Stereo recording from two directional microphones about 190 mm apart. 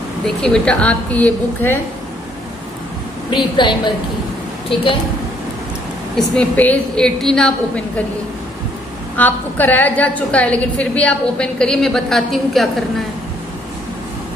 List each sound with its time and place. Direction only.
0.4 s a woman's voice: 5° left (ahead or behind)
3.5 s a woman's voice: 25° left (ahead or behind)
6.1 s a woman's voice: 5° left (ahead or behind)
9.1 s a woman's voice: 10° left (ahead or behind)